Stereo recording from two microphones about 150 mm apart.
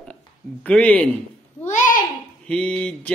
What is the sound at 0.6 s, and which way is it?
Speech, 5° left (ahead or behind).